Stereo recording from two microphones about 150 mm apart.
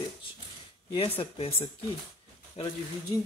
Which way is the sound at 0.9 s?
40° left (ahead or behind).